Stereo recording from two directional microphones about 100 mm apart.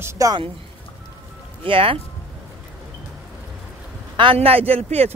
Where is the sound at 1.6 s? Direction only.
65° right (ahead or behind).